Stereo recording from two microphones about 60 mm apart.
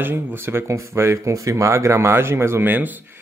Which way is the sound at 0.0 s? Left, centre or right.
Right.